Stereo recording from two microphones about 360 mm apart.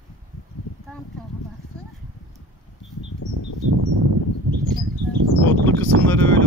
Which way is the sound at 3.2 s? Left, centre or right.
Left.